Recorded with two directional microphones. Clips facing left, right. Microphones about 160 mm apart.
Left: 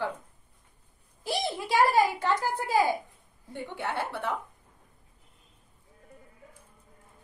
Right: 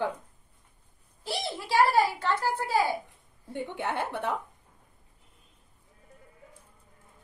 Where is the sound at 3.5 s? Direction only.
15° right (ahead or behind).